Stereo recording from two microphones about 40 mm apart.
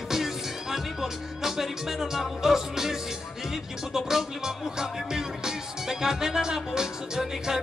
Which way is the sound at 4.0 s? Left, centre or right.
Centre.